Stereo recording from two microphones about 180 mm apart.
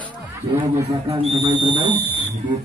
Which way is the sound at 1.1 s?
35° right (ahead or behind).